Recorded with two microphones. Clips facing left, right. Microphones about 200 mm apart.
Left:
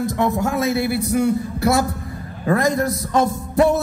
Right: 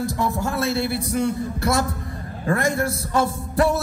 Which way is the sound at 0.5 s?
10° left (ahead or behind).